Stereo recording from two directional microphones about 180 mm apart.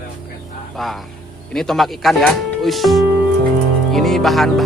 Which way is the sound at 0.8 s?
Centre (ahead or behind).